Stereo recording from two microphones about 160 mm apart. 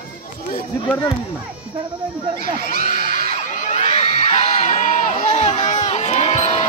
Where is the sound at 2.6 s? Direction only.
55° left (ahead or behind).